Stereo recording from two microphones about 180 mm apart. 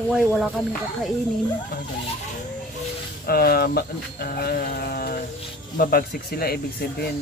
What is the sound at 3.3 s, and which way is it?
Speech, 60° left (ahead or behind).